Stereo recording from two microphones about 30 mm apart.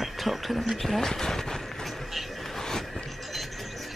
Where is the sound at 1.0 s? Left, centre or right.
Centre.